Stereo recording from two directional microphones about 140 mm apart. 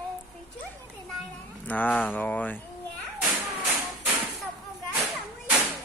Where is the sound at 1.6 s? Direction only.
10° left (ahead or behind).